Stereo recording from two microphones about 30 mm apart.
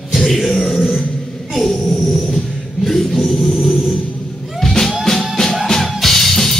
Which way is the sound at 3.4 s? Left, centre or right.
Centre.